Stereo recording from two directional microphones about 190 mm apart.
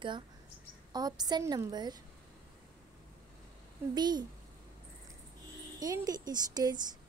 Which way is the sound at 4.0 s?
20° right (ahead or behind).